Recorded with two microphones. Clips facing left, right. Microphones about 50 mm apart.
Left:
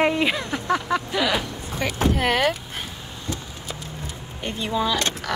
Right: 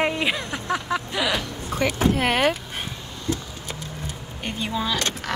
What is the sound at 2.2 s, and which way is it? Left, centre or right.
Speech, centre.